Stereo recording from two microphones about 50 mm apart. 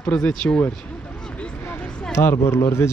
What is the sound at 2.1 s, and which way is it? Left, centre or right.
Speech, left.